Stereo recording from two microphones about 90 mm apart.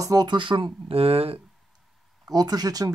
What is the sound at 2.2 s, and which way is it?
Speech, 45° right (ahead or behind).